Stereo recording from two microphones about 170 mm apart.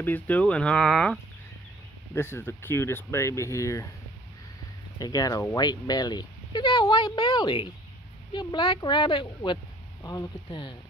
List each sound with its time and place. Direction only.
0.0 s speech: 10° left (ahead or behind)
2.1 s speech: 15° left (ahead or behind)
4.9 s speech: 25° left (ahead or behind)